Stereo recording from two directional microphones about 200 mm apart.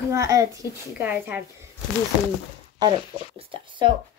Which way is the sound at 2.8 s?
25° right (ahead or behind).